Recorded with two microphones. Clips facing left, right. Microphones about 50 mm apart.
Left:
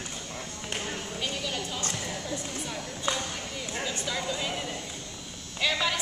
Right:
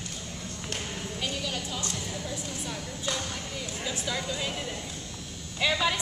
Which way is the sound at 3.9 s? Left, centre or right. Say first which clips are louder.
Even; centre.